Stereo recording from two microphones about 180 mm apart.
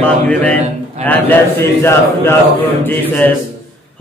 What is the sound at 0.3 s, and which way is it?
Mantra, 10° left (ahead or behind).